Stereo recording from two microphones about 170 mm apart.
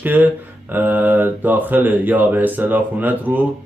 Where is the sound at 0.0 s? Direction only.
10° right (ahead or behind).